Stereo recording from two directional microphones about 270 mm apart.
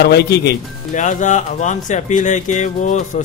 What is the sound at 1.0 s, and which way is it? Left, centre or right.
Speech, left.